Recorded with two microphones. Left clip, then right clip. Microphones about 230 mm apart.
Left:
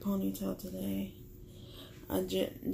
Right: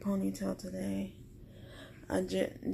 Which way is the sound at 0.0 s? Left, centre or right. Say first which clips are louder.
Right 1 dB; centre.